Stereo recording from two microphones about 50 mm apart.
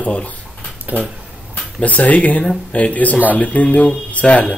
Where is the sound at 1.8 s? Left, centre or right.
Left.